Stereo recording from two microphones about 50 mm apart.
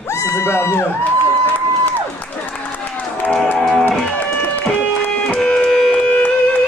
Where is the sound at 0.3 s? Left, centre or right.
Left.